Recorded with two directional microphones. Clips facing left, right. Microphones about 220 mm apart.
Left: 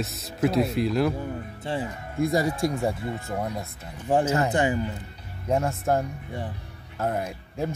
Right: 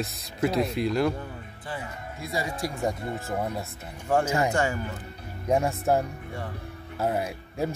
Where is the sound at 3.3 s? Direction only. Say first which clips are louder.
Even; 5° right (ahead or behind).